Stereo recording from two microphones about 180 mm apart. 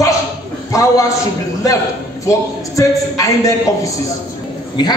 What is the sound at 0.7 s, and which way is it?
Speech, 15° left (ahead or behind).